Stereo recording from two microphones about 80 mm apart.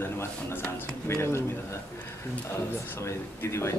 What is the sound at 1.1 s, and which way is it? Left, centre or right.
Speech, left.